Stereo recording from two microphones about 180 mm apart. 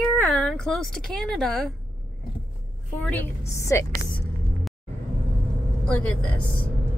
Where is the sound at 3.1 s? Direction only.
15° left (ahead or behind).